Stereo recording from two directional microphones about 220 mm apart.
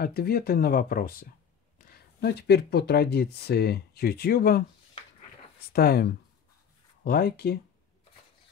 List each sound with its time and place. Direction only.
0.0 s speech: 45° left (ahead or behind)
5.7 s speech: 45° left (ahead or behind)
7.1 s speech: 45° left (ahead or behind)